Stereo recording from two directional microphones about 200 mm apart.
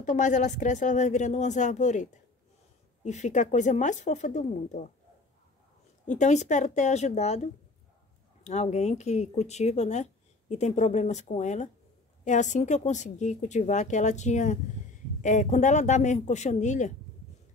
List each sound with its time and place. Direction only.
0.0 s speech: 40° left (ahead or behind)
6.0 s speech: 35° left (ahead or behind)
8.5 s speech: 35° left (ahead or behind)